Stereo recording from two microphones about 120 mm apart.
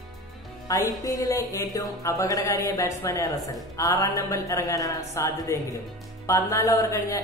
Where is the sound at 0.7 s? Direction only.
30° left (ahead or behind).